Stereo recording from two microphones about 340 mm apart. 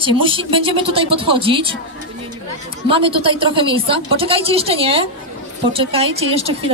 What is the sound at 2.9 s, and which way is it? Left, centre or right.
A woman's voice, centre.